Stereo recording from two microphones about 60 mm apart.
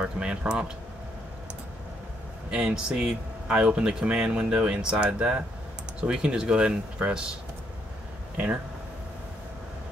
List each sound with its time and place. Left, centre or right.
0.0 s speech: centre
2.5 s speech: centre